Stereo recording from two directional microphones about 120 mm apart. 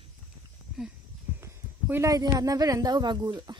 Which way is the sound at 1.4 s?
25° right (ahead or behind).